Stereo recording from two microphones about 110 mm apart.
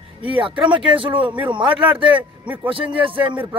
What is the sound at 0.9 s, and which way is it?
A man's voice, 50° right (ahead or behind).